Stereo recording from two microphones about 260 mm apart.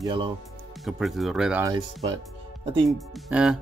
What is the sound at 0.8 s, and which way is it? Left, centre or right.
Speech, centre.